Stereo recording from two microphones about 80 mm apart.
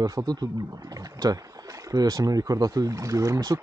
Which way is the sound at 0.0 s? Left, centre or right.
Right.